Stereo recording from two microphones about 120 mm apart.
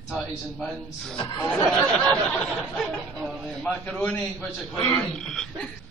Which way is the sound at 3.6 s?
15° left (ahead or behind).